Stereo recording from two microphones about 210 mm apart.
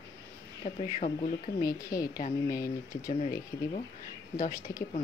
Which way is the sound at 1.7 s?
15° left (ahead or behind).